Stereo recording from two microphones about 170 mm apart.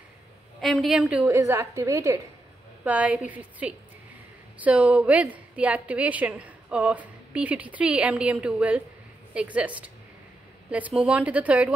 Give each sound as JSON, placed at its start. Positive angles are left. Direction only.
{"t": 0.6, "sound": "a woman's voice", "side_deg": 0}